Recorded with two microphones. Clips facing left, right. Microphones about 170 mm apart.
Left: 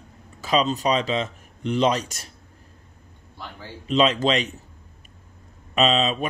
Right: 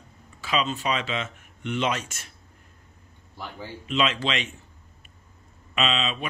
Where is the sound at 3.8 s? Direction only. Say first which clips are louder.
Left 6 dB; 35° left (ahead or behind).